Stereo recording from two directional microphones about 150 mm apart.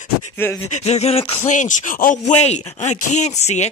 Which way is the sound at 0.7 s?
45° left (ahead or behind).